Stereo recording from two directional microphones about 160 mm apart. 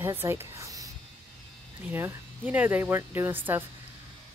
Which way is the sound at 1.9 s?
15° right (ahead or behind).